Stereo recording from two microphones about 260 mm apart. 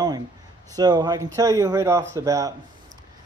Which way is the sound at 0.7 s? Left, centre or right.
Centre.